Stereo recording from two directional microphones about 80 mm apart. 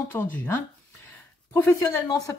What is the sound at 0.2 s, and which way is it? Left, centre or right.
Speech, left.